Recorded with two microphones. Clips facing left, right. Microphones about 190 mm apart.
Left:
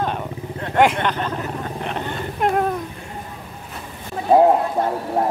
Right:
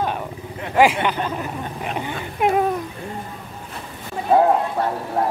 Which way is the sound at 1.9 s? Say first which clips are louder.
Left 1 dB; 10° right (ahead or behind).